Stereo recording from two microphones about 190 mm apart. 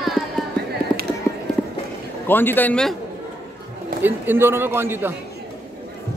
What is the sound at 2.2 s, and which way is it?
Speech, 10° left (ahead or behind).